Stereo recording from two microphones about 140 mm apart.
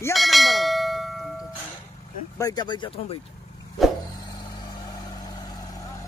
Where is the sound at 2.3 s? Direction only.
30° left (ahead or behind).